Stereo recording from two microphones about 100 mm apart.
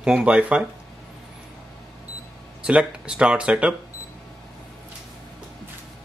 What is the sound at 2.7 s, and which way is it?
Speech, 10° right (ahead or behind).